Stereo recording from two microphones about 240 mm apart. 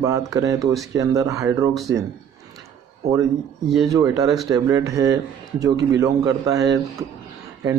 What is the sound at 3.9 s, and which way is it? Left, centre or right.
A man's voice, centre.